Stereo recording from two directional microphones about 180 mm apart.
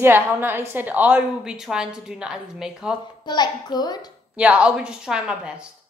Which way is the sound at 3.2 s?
25° left (ahead or behind).